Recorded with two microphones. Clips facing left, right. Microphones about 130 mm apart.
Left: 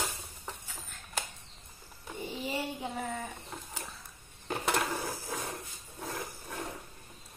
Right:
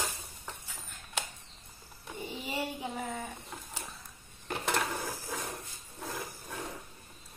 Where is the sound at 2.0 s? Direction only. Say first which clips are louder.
Left 2 dB; centre (ahead or behind).